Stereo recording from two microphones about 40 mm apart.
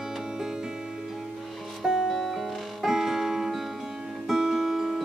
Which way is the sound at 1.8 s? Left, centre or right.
Centre.